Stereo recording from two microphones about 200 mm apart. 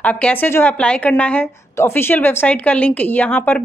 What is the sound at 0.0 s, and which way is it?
A woman's voice, 5° left (ahead or behind).